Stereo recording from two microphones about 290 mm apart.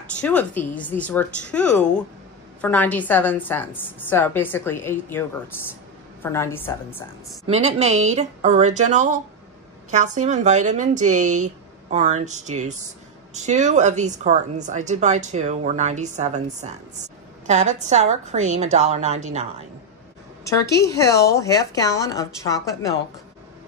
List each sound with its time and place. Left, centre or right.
0.0 s a woman's voice: centre
6.2 s a woman's voice: centre
7.4 s speech: right
20.7 s a woman's voice: centre